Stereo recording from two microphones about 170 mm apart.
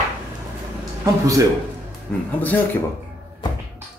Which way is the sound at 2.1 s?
5° left (ahead or behind).